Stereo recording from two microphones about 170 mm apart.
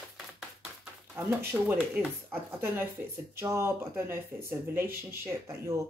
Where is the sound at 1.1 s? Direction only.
15° right (ahead or behind).